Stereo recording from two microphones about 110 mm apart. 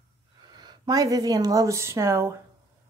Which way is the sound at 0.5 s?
40° right (ahead or behind).